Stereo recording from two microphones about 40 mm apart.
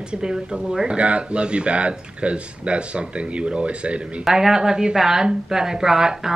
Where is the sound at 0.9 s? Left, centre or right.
Right.